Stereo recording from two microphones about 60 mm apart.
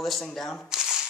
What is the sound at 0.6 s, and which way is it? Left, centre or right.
Shuffling cards, centre.